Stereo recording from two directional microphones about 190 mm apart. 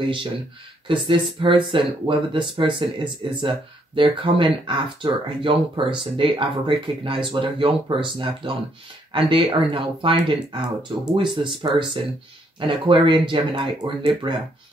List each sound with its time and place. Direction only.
0.8 s speech: 25° right (ahead or behind)